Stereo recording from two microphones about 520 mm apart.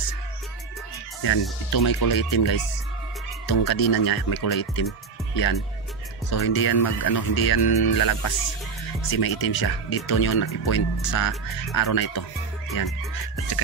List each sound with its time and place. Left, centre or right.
1.2 s speech: left
6.3 s speech: left